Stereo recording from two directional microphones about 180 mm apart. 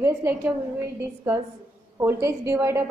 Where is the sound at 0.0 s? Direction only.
15° right (ahead or behind).